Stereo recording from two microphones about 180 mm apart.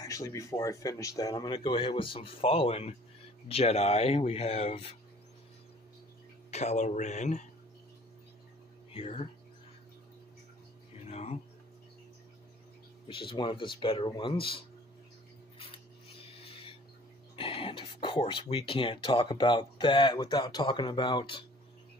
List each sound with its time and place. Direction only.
0.0 s speech: 20° left (ahead or behind); by 4.9 s 35° left (ahead or behind)
6.5 s speech: 40° left (ahead or behind)
8.9 s speech: 30° left (ahead or behind)
11.1 s a sound: 35° left (ahead or behind)
13.1 s speech: 25° left (ahead or behind)
15.6 s a sound: 30° left (ahead or behind)
17.4 s speech: 30° left (ahead or behind)